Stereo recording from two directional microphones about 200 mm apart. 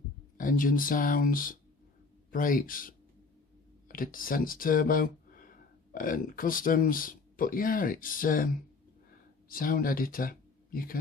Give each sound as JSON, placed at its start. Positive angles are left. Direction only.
{"t": 0.4, "sound": "speech", "side_deg": 45}
{"t": 9.5, "sound": "speech", "side_deg": 45}